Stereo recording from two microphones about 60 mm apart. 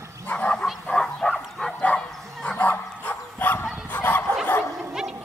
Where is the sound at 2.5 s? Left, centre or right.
Left.